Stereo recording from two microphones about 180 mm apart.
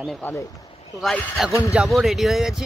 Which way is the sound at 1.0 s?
Centre (ahead or behind).